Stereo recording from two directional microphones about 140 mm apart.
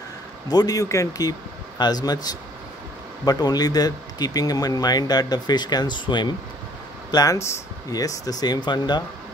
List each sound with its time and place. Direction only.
0.5 s speech: 30° left (ahead or behind)
3.3 s speech: 30° left (ahead or behind)